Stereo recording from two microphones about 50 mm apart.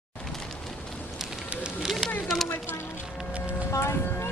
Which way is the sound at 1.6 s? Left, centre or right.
Centre.